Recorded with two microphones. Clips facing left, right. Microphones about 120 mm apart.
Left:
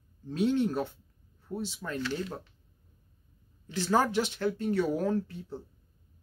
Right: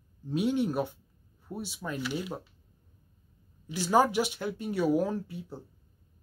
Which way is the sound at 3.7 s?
15° right (ahead or behind).